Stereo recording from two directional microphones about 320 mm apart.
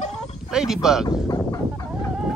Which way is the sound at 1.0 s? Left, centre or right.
Centre.